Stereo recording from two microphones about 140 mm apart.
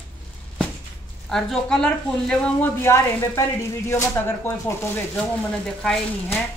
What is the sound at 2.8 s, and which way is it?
Speech, 20° left (ahead or behind).